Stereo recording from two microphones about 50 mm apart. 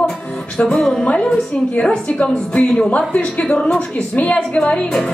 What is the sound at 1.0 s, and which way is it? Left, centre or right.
A woman's voice, left.